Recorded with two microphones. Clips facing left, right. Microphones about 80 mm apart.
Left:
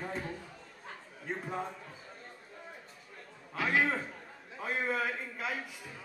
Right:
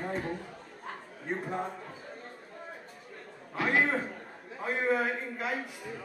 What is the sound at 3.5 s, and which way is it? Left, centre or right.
A man's voice, right.